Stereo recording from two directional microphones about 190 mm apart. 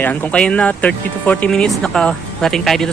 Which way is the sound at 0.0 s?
10° left (ahead or behind).